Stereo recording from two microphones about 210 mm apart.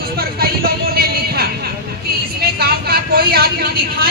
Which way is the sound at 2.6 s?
45° right (ahead or behind).